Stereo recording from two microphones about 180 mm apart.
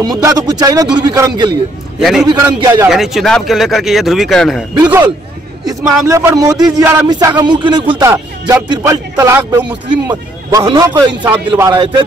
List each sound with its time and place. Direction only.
0.0 s speech: 20° right (ahead or behind)
2.0 s a man's voice: centre (ahead or behind)
2.2 s speech: 20° right (ahead or behind)
2.9 s speech: centre (ahead or behind)
5.7 s a man's voice: 20° right (ahead or behind)
8.1 s speech: 10° right (ahead or behind)
8.6 s speech: 25° right (ahead or behind)
11.2 s speech: 15° right (ahead or behind)